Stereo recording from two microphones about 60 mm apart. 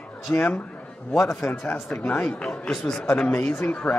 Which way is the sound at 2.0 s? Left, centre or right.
Left.